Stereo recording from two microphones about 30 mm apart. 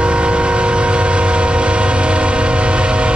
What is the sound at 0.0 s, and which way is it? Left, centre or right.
Train, right.